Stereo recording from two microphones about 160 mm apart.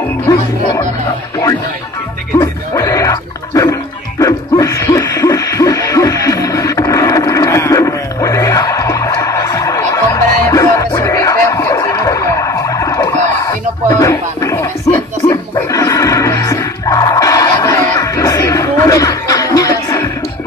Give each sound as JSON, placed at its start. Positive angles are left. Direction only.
{"t": 2.3, "sound": "music", "side_deg": 20}
{"t": 4.2, "sound": "hoot", "side_deg": 20}
{"t": 15.5, "sound": "music", "side_deg": 20}